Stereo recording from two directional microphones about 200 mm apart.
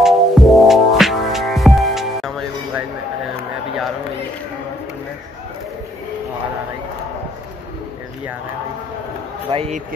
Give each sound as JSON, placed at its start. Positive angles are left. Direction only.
{"t": 0.0, "sound": "music", "side_deg": 0}
{"t": 9.5, "sound": "a man's voice", "side_deg": -30}